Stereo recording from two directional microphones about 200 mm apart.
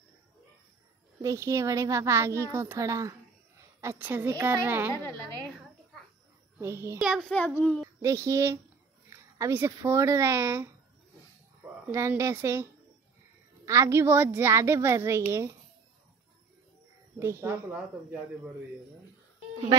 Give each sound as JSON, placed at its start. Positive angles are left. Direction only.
{"t": 1.2, "sound": "a child's voice", "side_deg": -15}
{"t": 6.6, "sound": "a child's voice", "side_deg": -15}
{"t": 7.0, "sound": "a child's voice", "side_deg": 0}
{"t": 8.0, "sound": "a child's voice", "side_deg": -15}
{"t": 11.9, "sound": "a child's voice", "side_deg": -15}
{"t": 13.7, "sound": "a child's voice", "side_deg": -15}
{"t": 17.2, "sound": "a child's voice", "side_deg": -10}